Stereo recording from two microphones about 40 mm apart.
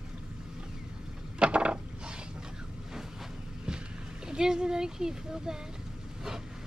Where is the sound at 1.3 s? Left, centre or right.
Right.